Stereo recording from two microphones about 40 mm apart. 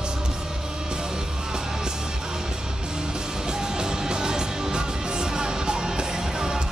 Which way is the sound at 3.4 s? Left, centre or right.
Centre.